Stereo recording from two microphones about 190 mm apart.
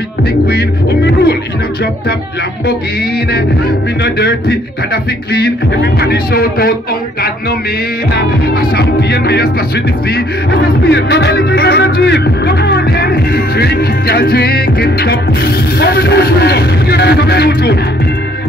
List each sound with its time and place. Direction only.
0.5 s music: 55° left (ahead or behind)
4.0 s music: 60° left (ahead or behind)
8.1 s music: 55° left (ahead or behind)